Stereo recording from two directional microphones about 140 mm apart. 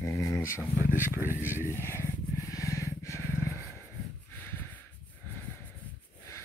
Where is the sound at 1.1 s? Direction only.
15° right (ahead or behind).